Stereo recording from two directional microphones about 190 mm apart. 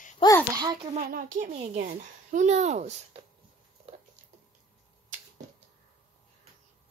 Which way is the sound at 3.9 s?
35° right (ahead or behind).